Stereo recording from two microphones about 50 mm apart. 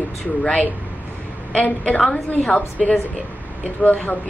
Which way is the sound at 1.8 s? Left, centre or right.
Left.